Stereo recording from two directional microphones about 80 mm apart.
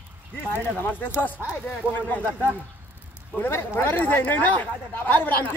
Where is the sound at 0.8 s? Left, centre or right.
Left.